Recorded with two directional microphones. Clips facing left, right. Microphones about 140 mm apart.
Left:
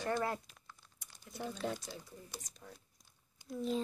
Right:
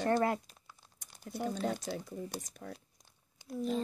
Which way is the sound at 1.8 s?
60° right (ahead or behind).